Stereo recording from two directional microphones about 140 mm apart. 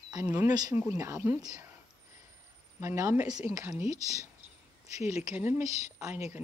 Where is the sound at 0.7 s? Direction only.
15° right (ahead or behind).